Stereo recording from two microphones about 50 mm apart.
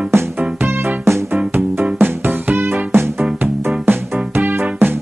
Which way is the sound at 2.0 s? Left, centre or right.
Right.